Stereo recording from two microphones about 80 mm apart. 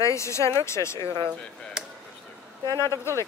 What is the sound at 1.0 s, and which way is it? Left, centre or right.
Speech, right.